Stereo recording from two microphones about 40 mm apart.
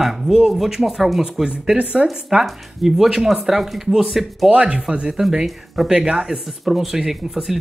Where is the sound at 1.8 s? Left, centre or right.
Right.